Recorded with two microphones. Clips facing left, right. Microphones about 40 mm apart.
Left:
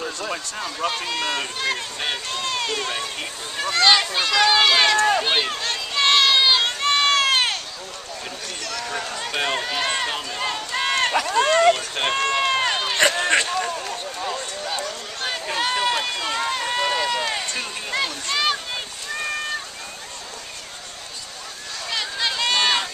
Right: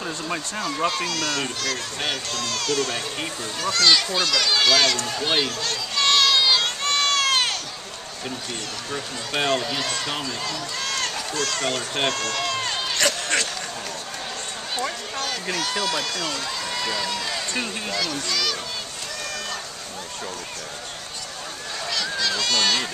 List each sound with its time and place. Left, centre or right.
0.0 s speech: centre
0.8 s speech: centre
5.2 s a sound: left
9.6 s speech: left
10.4 s run: left
11.2 s speech: left
12.1 s run: left
15.5 s speech: left
16.4 s run: left
18.2 s speech: left
19.1 s a sound: left
21.9 s run: left